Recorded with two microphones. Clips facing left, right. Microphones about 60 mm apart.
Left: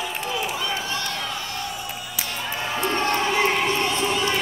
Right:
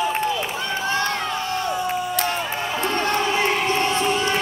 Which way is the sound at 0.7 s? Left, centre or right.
Right.